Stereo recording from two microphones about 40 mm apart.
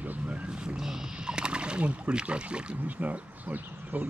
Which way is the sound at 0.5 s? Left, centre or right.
Centre.